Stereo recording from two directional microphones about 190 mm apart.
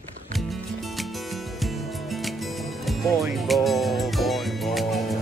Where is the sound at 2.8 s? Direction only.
Centre (ahead or behind).